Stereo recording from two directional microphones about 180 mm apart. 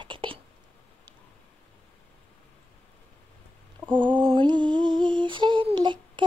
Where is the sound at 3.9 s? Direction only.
25° right (ahead or behind).